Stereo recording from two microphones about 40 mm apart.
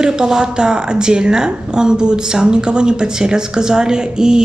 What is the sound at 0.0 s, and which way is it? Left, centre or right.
A woman's voice, centre.